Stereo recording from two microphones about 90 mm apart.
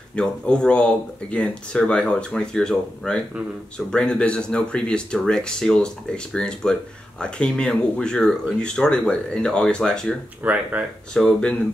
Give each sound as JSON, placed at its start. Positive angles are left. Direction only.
{"t": 0.1, "sound": "speech", "side_deg": 10}
{"t": 10.4, "sound": "speech", "side_deg": -15}
{"t": 11.1, "sound": "speech", "side_deg": 5}